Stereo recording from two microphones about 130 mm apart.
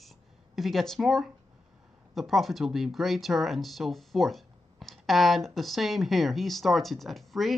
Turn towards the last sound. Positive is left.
turn(degrees=0)  # may be behind; listen again after turning